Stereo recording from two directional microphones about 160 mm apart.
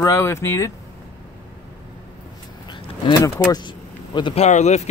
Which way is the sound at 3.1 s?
25° left (ahead or behind).